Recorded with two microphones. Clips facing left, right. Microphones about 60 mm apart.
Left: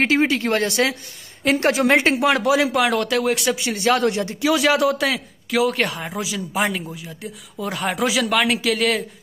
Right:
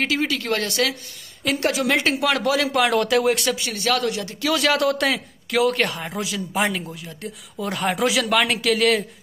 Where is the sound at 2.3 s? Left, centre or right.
Centre.